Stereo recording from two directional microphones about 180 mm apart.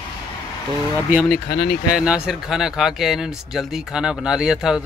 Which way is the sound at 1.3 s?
60° left (ahead or behind).